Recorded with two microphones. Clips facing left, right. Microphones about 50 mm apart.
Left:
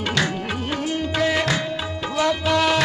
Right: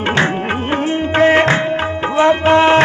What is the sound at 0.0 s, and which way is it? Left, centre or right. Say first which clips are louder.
Music: right 7 dB; right.